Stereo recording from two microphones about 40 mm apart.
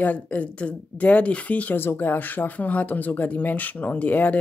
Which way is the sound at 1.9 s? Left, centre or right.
Left.